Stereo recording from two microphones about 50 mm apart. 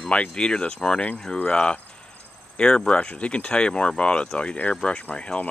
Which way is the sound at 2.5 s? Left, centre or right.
Centre.